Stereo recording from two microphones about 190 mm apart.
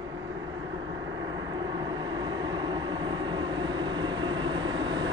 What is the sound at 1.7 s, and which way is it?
Train, 20° right (ahead or behind).